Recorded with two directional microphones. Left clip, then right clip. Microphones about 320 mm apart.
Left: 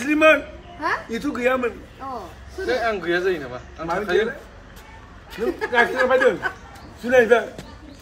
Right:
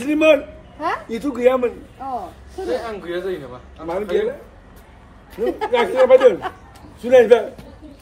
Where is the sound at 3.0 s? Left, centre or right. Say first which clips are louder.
Left 4 dB; left.